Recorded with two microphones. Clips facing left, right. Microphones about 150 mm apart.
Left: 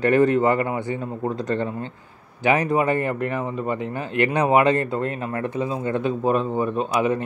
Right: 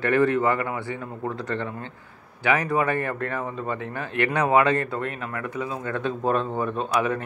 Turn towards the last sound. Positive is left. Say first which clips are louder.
# left 3 dB
turn(degrees=20)  # may be behind; listen again after turning